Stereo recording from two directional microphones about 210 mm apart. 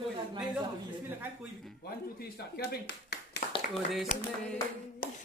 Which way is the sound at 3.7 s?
Centre (ahead or behind).